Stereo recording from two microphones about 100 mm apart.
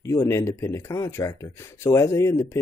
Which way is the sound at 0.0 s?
30° left (ahead or behind).